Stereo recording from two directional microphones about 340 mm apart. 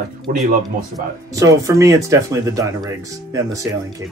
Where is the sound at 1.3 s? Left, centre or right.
Centre.